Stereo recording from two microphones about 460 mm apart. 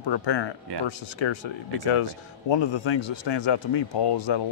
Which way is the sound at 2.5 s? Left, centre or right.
Left.